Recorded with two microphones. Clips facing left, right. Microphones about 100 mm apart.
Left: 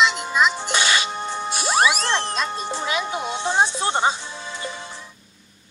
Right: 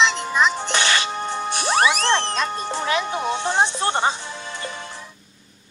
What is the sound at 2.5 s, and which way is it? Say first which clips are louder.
Speech: right 2 dB; 15° left (ahead or behind).